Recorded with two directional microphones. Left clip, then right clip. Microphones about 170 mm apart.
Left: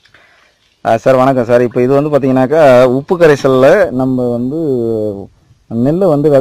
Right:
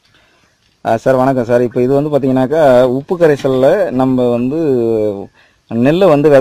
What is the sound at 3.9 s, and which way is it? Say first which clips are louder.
Speech: right 2 dB; 30° right (ahead or behind).